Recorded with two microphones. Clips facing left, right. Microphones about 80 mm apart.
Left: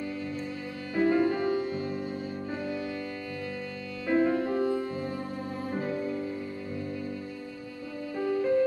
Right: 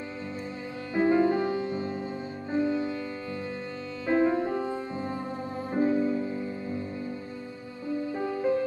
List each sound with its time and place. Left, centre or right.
0.9 s music: right
4.1 s music: right
8.2 s music: right